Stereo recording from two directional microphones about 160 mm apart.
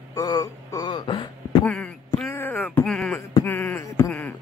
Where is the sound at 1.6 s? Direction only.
5° left (ahead or behind).